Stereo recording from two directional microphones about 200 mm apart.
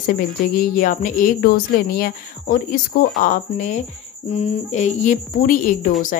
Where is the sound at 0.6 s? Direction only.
40° left (ahead or behind).